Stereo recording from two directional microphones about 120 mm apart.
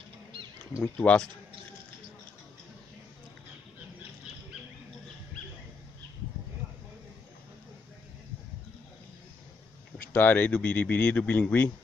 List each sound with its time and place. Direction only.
0.9 s speech: 10° left (ahead or behind)
10.1 s speech: 15° left (ahead or behind)